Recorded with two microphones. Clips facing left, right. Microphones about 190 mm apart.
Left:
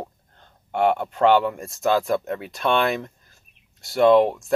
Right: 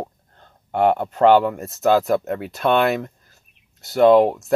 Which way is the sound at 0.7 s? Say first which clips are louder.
Right 3 dB; 40° right (ahead or behind).